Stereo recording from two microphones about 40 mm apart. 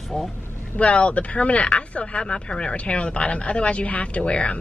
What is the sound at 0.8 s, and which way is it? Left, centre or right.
Speech, left.